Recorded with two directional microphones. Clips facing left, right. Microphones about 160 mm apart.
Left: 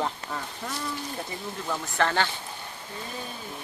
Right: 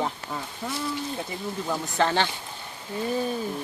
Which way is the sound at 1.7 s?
20° right (ahead or behind).